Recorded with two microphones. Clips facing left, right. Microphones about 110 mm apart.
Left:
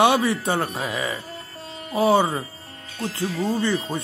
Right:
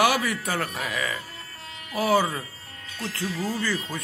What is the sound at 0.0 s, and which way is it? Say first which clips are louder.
Speech: left 4 dB; 25° left (ahead or behind).